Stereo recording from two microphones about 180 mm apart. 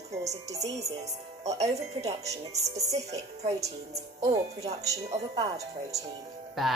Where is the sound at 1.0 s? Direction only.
40° right (ahead or behind).